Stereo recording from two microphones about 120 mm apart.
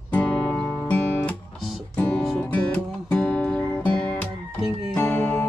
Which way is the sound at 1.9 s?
5° left (ahead or behind).